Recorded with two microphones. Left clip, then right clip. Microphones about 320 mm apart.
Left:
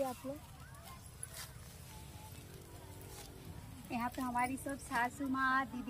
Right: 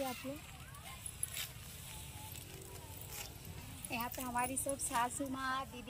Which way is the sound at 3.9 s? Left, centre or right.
Right.